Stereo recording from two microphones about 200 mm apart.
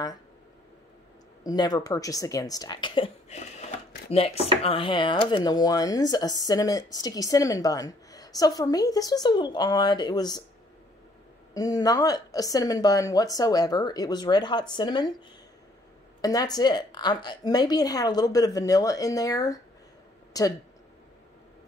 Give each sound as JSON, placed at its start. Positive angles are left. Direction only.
{"t": 1.4, "sound": "a woman's voice", "side_deg": 20}
{"t": 11.5, "sound": "speech", "side_deg": 20}